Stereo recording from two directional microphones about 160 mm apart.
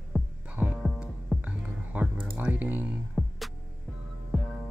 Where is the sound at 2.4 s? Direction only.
10° right (ahead or behind).